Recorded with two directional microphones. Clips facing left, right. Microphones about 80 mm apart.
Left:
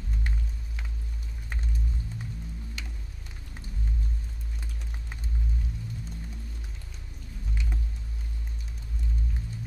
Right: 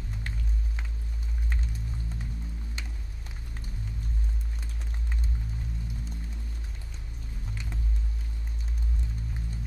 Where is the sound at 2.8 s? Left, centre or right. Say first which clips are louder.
Right 1 dB; right.